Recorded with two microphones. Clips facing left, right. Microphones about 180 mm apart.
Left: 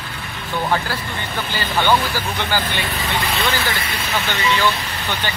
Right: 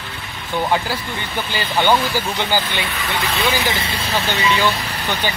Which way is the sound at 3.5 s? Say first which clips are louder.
Right 2 dB; 20° right (ahead or behind).